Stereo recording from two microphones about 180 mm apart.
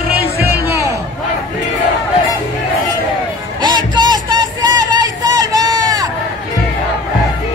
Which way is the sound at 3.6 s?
25° right (ahead or behind).